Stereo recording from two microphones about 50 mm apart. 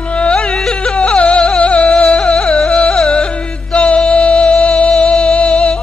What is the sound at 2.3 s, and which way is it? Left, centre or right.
Music, centre.